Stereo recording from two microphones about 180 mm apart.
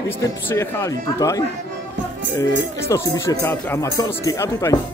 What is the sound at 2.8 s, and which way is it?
Speech, 15° left (ahead or behind).